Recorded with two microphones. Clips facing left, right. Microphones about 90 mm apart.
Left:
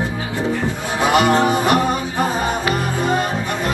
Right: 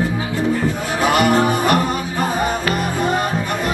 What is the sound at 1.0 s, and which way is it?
Music, 20° left (ahead or behind).